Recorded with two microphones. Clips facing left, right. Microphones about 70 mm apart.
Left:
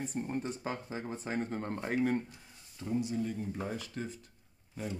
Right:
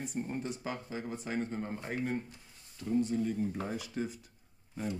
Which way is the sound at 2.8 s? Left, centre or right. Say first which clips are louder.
Right 3 dB; centre.